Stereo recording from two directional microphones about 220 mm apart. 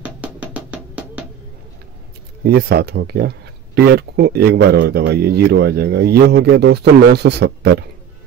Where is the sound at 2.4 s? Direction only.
45° right (ahead or behind).